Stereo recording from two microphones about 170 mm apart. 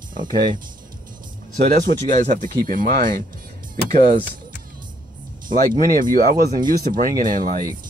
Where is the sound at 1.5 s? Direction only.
45° right (ahead or behind).